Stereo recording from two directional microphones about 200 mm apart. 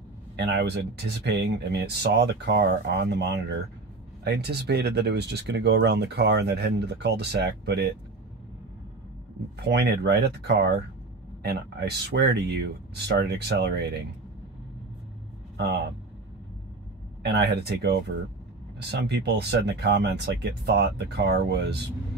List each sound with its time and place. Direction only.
0.4 s speech: 55° right (ahead or behind)
9.6 s speech: 60° right (ahead or behind)
15.5 s speech: 60° right (ahead or behind)
17.2 s speech: 55° right (ahead or behind)